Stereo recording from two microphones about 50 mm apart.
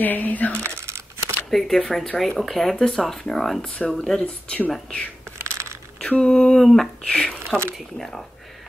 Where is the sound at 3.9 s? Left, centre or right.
Centre.